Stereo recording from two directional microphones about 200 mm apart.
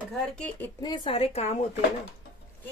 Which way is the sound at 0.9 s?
25° left (ahead or behind).